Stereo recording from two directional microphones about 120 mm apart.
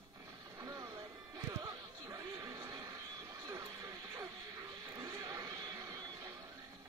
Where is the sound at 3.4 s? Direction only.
25° right (ahead or behind).